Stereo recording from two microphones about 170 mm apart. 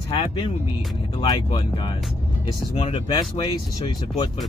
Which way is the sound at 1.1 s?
30° left (ahead or behind).